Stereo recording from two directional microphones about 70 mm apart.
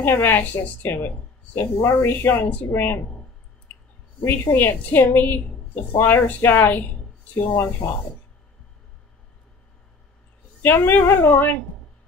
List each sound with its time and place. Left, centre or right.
0.0 s a woman's voice: left
4.2 s a woman's voice: left
10.6 s a woman's voice: left